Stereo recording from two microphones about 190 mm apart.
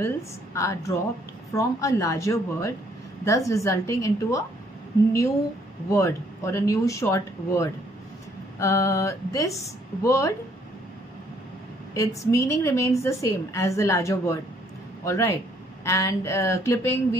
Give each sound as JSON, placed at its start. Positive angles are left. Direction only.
{"t": 0.6, "sound": "a woman's voice", "side_deg": 15}
{"t": 5.9, "sound": "a woman's voice", "side_deg": 15}
{"t": 11.9, "sound": "a woman's voice", "side_deg": 15}